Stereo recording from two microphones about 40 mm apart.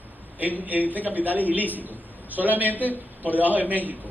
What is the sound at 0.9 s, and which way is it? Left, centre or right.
A man's voice, right.